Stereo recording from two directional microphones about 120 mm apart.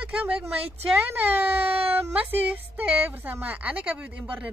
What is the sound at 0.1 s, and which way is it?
Speech, 10° right (ahead or behind).